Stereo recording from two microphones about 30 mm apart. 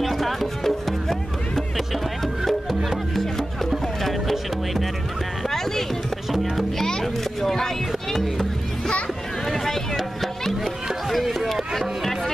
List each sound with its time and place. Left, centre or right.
0.0 s music: centre
4.0 s music: centre
6.8 s music: centre
9.5 s a sound: centre
10.6 s music: centre